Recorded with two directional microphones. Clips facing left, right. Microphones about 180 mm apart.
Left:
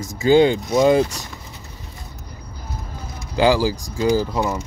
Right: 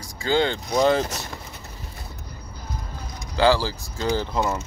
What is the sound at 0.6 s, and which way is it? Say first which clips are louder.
Speech: left 4 dB; centre (ahead or behind).